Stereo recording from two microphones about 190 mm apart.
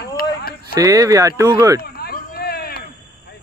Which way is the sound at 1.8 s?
55° left (ahead or behind).